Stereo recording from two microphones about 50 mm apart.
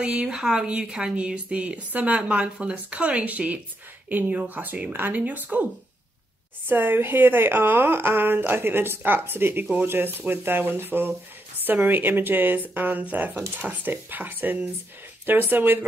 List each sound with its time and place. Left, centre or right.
0.0 s a woman's voice: right
6.7 s a woman's voice: right